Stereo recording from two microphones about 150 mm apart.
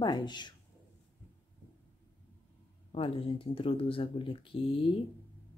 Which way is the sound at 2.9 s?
40° left (ahead or behind).